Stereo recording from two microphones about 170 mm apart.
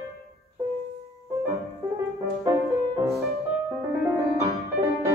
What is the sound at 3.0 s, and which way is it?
Music, centre (ahead or behind).